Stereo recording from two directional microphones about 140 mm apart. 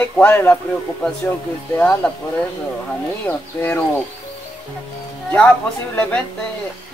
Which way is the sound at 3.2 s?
10° left (ahead or behind).